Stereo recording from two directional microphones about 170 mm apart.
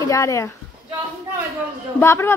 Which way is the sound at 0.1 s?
20° left (ahead or behind).